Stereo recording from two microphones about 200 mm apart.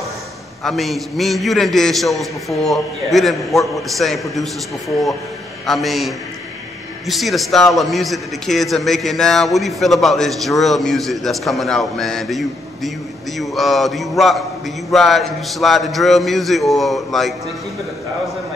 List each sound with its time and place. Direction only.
0.7 s a man's voice: centre (ahead or behind)
5.7 s a man's voice: centre (ahead or behind)